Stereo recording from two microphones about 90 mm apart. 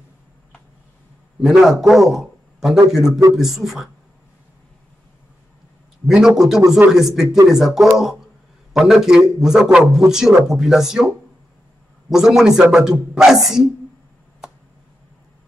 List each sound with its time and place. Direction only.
1.4 s a man's voice: 5° right (ahead or behind)
3.1 s speech: 40° right (ahead or behind)
3.3 s a man's voice: 5° right (ahead or behind)
6.0 s a man's voice: 5° right (ahead or behind)
12.1 s a man's voice: 5° right (ahead or behind)